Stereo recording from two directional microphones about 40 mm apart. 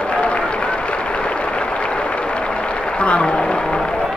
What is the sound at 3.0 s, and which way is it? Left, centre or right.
Speech, left.